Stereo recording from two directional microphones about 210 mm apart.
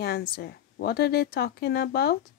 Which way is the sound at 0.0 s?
50° left (ahead or behind).